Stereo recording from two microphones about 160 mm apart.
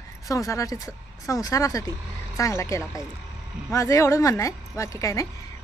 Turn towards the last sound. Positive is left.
turn(degrees=20)  # may be behind; listen again after turning